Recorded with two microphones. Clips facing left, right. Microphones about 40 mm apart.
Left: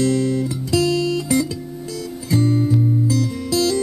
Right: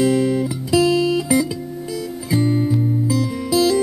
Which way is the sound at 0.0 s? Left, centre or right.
Centre.